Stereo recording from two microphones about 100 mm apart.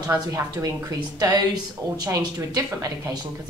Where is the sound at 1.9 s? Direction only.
40° right (ahead or behind).